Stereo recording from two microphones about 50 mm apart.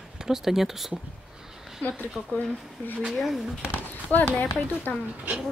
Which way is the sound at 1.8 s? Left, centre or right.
Left.